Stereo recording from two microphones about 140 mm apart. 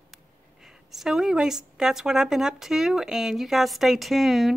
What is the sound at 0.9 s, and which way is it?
Speech, 5° right (ahead or behind).